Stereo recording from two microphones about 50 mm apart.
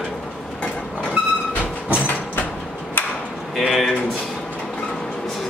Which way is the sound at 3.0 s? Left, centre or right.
Left.